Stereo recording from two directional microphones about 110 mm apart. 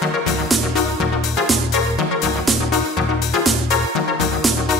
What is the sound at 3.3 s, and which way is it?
Music, centre (ahead or behind).